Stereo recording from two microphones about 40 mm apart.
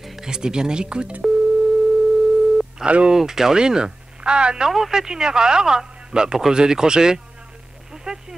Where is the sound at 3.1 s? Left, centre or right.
Centre.